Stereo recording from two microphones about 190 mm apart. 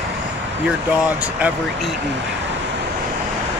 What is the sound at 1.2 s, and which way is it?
Speech, 5° right (ahead or behind).